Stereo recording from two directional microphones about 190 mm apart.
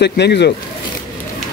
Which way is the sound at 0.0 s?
60° left (ahead or behind).